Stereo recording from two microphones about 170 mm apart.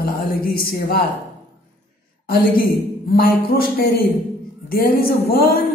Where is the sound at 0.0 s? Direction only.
60° left (ahead or behind).